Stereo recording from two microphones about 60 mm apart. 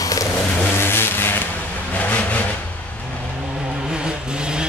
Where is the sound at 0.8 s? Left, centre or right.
Left.